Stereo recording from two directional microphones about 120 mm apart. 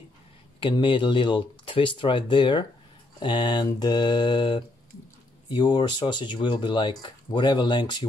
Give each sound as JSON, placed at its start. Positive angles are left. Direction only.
{"t": 0.6, "sound": "speech", "side_deg": 45}